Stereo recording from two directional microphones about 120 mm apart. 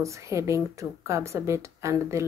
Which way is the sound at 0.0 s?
25° right (ahead or behind).